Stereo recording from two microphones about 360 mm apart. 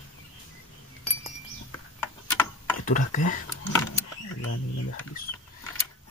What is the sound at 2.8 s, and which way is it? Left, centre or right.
Speech, left.